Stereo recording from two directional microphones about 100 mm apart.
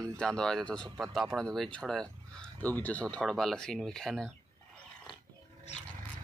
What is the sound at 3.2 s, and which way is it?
Speech, centre (ahead or behind).